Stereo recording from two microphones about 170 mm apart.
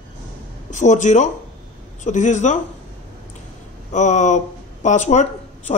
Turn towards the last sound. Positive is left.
turn(degrees=45)  # may be behind; listen again after turning